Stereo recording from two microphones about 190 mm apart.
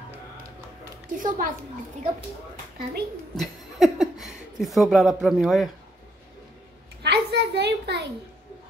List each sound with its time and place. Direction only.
1.1 s a woman's voice: 45° right (ahead or behind)
3.3 s speech: centre (ahead or behind)
7.0 s a sound: 60° right (ahead or behind)